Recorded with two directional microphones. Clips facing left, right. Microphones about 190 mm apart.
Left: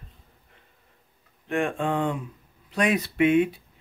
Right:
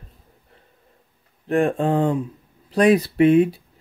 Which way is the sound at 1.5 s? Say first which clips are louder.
Right 6 dB; 35° right (ahead or behind).